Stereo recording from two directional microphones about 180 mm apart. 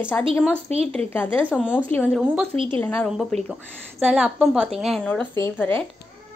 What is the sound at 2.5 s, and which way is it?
Speech, 30° right (ahead or behind).